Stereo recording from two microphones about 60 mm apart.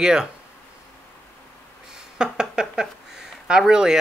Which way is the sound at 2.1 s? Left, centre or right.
Centre.